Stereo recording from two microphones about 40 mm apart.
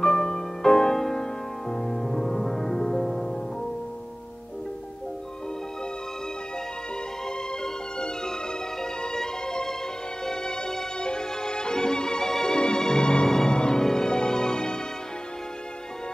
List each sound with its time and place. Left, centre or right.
0.0 s music: centre
7.2 s music: centre